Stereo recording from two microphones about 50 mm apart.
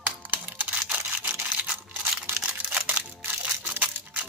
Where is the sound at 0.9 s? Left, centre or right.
Right.